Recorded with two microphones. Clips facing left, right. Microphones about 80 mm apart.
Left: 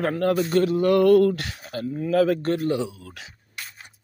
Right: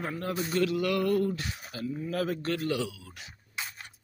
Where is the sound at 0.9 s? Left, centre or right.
Left.